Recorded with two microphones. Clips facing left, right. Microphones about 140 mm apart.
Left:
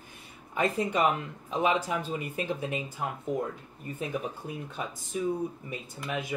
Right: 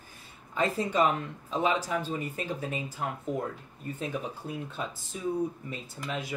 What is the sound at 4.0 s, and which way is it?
Speech, 15° left (ahead or behind).